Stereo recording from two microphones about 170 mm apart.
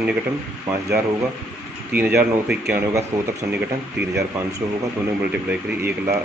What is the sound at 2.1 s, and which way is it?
Speech, 10° right (ahead or behind).